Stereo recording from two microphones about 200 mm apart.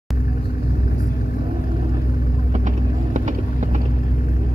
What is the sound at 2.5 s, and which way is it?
Vehicle, 40° right (ahead or behind).